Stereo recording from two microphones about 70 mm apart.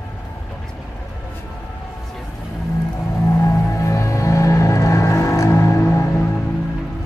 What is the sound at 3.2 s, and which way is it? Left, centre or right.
Music, left.